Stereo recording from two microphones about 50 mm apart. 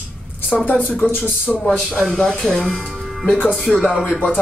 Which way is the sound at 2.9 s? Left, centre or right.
Centre.